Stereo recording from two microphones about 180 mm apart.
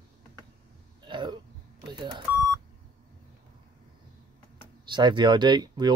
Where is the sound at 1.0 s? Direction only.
25° right (ahead or behind).